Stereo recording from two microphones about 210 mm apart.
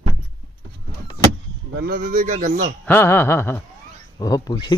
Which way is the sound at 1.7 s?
45° right (ahead or behind).